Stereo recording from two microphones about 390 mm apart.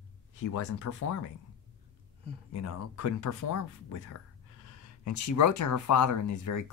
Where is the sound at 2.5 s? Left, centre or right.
Left.